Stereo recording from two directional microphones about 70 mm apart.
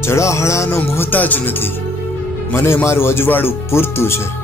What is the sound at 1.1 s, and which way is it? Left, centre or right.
Speech, left.